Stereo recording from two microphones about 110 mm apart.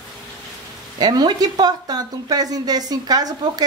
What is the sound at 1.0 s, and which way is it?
A woman's voice, 40° right (ahead or behind).